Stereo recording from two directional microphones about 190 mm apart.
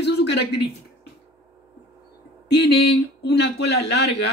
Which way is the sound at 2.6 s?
60° left (ahead or behind).